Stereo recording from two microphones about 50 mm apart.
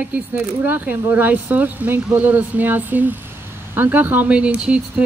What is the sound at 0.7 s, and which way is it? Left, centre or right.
Speech, right.